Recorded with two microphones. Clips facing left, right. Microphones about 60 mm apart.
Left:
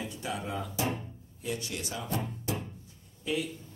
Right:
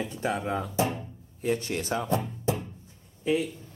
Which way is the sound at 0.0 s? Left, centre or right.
Right.